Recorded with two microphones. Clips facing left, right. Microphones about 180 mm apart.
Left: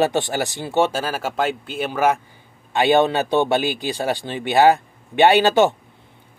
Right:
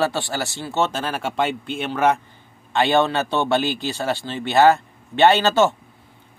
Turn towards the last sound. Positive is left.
turn(degrees=15)  # may be behind; listen again after turning